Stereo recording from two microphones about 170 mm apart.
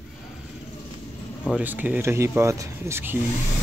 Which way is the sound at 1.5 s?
10° right (ahead or behind).